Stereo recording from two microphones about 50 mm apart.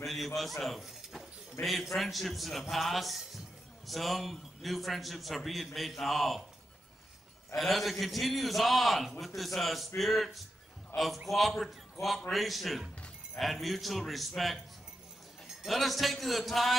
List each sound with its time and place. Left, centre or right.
0.0 s a man's voice: centre
7.5 s a man's voice: centre
10.9 s a man's voice: left
11.2 s a man's voice: centre
15.6 s a man's voice: centre